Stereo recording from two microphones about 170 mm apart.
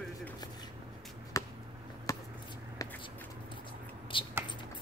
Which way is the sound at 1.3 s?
20° left (ahead or behind).